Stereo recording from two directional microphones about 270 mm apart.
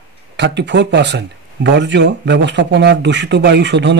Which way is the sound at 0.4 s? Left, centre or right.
Right.